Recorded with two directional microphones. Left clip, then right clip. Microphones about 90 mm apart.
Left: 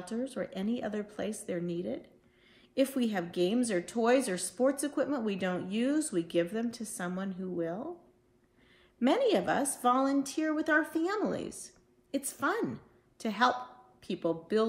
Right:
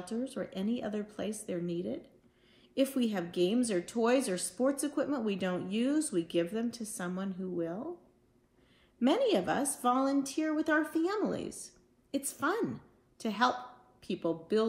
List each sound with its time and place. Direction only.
0.0 s speech: 25° left (ahead or behind)
9.0 s speech: 25° left (ahead or behind)